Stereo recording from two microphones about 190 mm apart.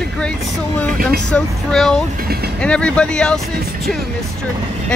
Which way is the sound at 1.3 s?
5° left (ahead or behind).